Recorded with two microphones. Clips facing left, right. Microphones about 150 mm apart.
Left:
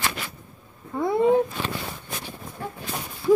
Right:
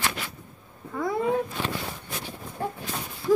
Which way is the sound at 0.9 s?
25° left (ahead or behind).